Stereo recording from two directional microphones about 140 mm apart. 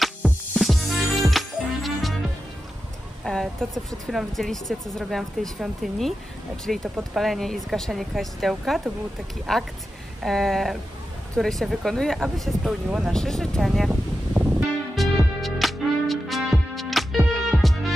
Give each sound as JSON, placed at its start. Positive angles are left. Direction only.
{"t": 0.0, "sound": "music", "side_deg": 0}
{"t": 3.3, "sound": "speech", "side_deg": 5}
{"t": 14.3, "sound": "music", "side_deg": -15}
{"t": 15.0, "sound": "music", "side_deg": 0}